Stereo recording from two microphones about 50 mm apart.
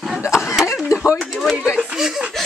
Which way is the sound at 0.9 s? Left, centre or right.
Left.